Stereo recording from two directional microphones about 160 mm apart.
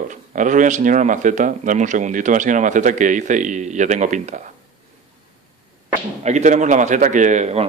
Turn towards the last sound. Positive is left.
turn(degrees=-45)  # may be behind; listen again after turning